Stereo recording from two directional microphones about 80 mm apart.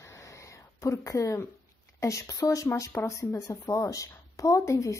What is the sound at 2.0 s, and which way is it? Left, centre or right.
A woman's voice, left.